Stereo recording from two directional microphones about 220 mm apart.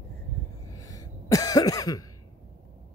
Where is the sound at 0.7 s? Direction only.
15° left (ahead or behind).